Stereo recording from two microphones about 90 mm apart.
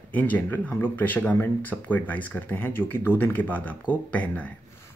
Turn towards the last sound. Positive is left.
turn(degrees=15)  # may be behind; listen again after turning